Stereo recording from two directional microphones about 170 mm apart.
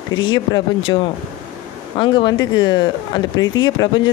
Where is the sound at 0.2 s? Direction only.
30° left (ahead or behind).